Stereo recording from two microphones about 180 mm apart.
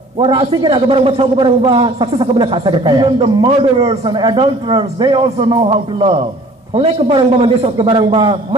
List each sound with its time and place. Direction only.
0.2 s a man's voice: 25° right (ahead or behind)